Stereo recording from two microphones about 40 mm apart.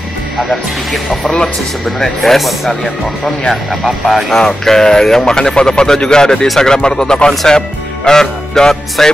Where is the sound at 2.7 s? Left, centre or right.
Centre.